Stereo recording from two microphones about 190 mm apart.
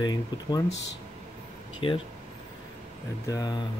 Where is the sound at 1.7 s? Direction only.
25° left (ahead or behind).